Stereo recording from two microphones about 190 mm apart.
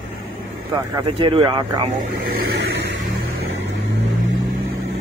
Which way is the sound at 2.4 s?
70° right (ahead or behind).